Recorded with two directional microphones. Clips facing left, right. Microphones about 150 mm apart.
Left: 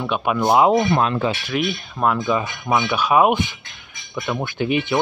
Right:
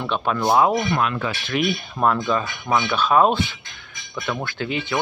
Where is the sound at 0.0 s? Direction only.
10° left (ahead or behind); by 1.4 s 25° left (ahead or behind).